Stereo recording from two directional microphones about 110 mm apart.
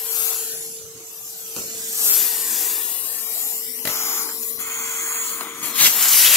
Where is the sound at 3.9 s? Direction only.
25° left (ahead or behind).